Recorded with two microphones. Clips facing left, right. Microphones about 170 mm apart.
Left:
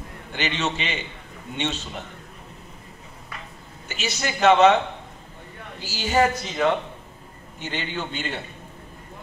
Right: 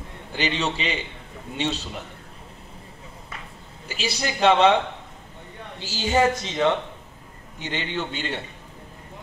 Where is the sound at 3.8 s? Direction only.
30° right (ahead or behind).